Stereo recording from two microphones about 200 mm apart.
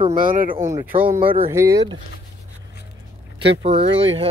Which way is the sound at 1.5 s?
15° right (ahead or behind).